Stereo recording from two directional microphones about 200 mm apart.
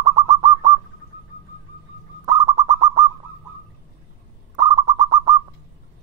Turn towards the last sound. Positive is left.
turn(degrees=-15)  # may be behind; listen again after turning